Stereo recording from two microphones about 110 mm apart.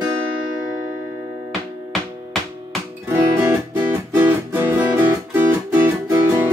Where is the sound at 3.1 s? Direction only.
25° right (ahead or behind).